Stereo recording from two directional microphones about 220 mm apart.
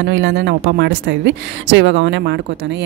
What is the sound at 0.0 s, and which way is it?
A woman's voice, 55° right (ahead or behind).